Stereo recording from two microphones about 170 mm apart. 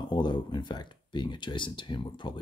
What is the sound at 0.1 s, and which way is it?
Speech, 25° left (ahead or behind).